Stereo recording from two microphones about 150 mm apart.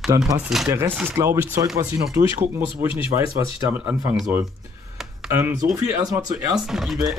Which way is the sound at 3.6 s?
10° right (ahead or behind).